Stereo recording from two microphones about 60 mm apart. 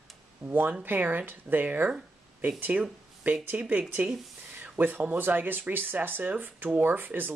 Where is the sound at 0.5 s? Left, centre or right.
Right.